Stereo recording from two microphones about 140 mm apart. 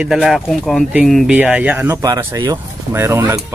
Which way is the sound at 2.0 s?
25° right (ahead or behind).